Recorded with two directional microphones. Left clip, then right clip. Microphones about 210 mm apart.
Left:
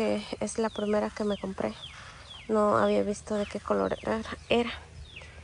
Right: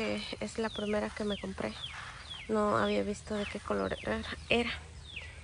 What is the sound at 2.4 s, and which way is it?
Speech, 5° left (ahead or behind).